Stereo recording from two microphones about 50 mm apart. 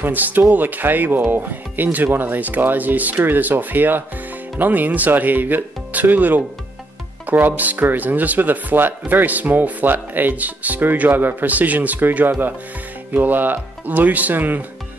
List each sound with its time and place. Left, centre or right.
0.0 s speech: right
12.3 s speech: right